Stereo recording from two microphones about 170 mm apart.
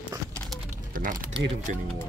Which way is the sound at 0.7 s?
50° right (ahead or behind).